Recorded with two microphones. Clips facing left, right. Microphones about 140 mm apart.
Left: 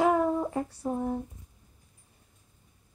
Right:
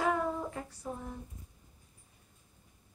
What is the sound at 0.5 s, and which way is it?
Female singing, 45° left (ahead or behind).